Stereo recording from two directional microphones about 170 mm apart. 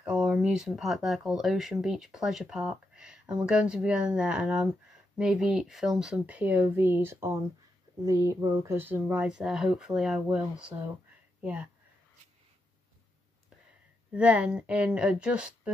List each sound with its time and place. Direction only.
0.0 s speech: 5° right (ahead or behind)
14.1 s speech: 10° right (ahead or behind)